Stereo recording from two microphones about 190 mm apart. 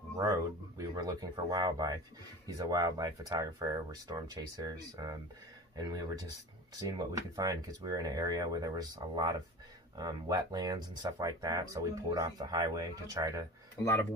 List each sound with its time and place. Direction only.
0.2 s speech: 15° right (ahead or behind)